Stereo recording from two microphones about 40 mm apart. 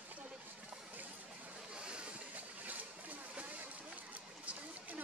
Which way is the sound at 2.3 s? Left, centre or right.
Right.